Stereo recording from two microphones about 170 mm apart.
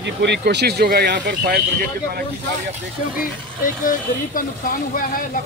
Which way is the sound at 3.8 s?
55° left (ahead or behind).